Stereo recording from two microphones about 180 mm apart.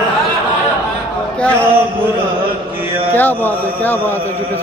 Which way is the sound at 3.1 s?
10° left (ahead or behind).